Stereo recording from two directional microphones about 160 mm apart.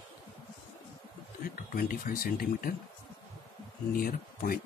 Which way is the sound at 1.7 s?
65° left (ahead or behind).